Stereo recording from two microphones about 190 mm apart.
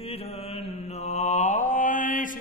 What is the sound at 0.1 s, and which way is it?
Mantra, 30° left (ahead or behind).